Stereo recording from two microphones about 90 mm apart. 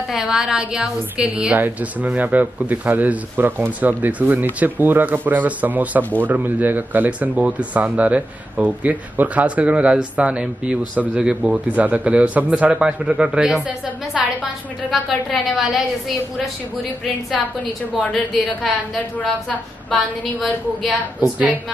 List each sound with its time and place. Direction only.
0.1 s a man's voice: 10° right (ahead or behind)
18.1 s a woman's voice: centre (ahead or behind)
19.9 s a woman's voice: centre (ahead or behind)